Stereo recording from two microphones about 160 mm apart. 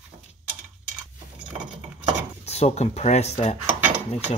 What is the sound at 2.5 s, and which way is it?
Speech, 40° left (ahead or behind).